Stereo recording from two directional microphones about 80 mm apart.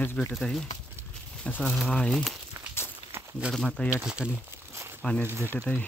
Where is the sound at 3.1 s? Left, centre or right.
Right.